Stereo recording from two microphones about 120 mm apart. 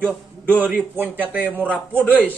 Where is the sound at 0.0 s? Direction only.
15° right (ahead or behind).